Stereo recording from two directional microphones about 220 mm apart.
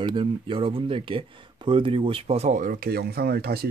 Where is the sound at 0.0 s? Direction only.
20° right (ahead or behind).